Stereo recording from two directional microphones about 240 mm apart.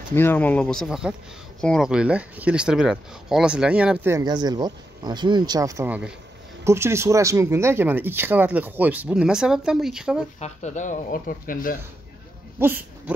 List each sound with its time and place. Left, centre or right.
0.1 s speech: centre
10.4 s speech: left
12.5 s speech: centre